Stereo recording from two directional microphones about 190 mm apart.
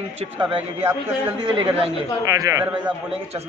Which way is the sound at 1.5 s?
30° right (ahead or behind).